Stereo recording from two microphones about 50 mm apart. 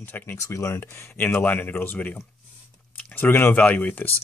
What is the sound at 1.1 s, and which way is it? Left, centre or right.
Speech, left.